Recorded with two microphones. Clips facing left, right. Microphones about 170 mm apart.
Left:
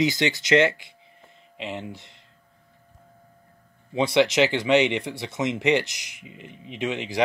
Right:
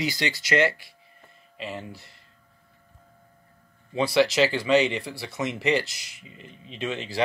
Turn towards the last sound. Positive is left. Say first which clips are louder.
# left 3 dB
turn(degrees=15)  # may be behind; listen again after turning